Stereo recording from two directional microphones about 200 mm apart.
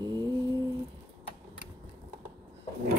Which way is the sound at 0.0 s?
20° right (ahead or behind).